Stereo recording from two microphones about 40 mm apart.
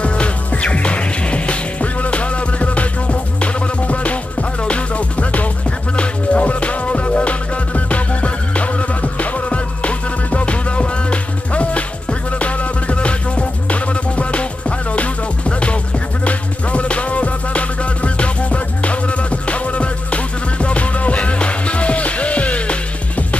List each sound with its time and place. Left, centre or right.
0.0 s music: left